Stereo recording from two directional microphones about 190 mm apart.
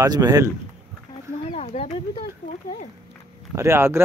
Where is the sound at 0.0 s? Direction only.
20° right (ahead or behind).